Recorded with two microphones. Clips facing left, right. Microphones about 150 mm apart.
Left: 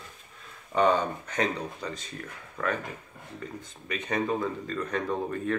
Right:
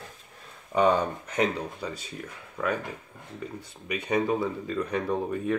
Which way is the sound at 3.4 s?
10° right (ahead or behind).